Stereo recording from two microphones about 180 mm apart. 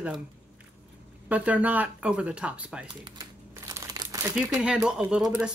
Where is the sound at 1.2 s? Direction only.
10° right (ahead or behind).